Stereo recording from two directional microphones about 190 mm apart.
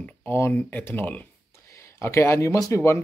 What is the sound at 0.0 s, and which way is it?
Speech, 10° left (ahead or behind).